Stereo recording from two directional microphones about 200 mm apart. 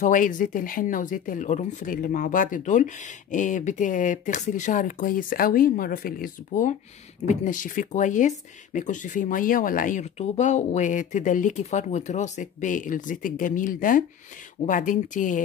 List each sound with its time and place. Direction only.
0.0 s speech: 40° left (ahead or behind)